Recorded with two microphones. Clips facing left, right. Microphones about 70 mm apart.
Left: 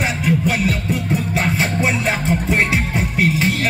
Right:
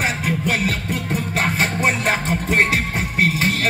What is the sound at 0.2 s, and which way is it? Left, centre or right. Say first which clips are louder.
Music: left 3 dB; right.